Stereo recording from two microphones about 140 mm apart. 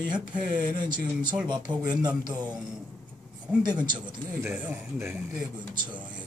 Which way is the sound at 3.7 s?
30° right (ahead or behind).